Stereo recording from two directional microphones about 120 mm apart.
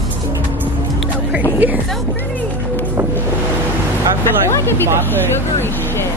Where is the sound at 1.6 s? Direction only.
15° right (ahead or behind).